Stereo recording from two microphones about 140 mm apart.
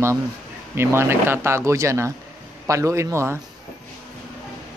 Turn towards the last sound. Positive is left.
turn(degrees=-20)  # may be behind; listen again after turning